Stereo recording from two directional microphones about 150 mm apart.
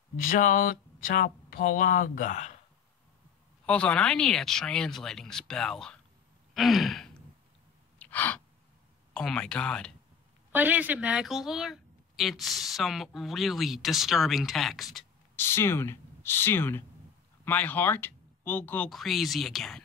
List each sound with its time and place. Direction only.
0.2 s speech: 65° left (ahead or behind)
3.6 s speech: 5° left (ahead or behind)
6.5 s gasp: centre (ahead or behind)
8.0 s gasp: 10° left (ahead or behind)
9.1 s speech: 5° left (ahead or behind)
10.5 s speech: 10° right (ahead or behind)
15.3 s speech: 15° left (ahead or behind)
18.9 s speech: centre (ahead or behind)